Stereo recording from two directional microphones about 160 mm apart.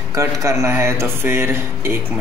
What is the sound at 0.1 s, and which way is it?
Speech, 20° right (ahead or behind).